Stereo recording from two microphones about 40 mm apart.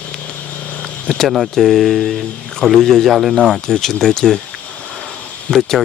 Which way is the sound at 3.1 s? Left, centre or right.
Centre.